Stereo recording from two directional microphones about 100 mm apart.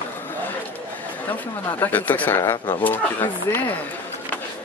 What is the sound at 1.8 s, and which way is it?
Speech, 15° left (ahead or behind).